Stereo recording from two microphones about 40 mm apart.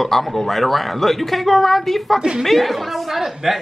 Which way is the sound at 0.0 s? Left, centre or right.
Centre.